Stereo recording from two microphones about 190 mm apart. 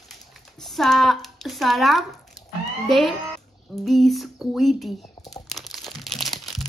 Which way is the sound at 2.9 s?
Centre (ahead or behind).